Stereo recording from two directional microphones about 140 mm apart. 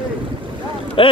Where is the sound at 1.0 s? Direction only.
40° left (ahead or behind).